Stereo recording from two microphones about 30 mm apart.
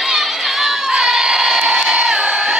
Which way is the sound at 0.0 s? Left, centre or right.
Centre.